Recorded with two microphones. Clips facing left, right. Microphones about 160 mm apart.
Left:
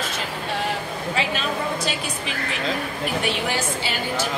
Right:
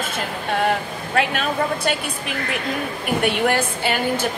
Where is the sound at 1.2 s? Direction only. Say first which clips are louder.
Right 6 dB; 55° right (ahead or behind).